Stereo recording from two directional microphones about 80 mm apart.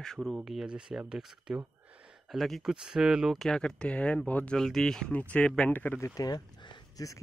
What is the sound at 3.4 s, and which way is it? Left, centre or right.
Speech, centre.